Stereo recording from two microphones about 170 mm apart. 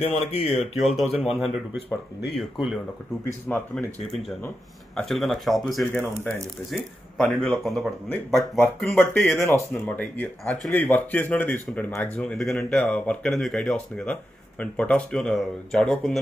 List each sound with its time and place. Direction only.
0.0 s speech: 35° left (ahead or behind)
0.8 s speech: centre (ahead or behind)
8.5 s speech: 15° left (ahead or behind)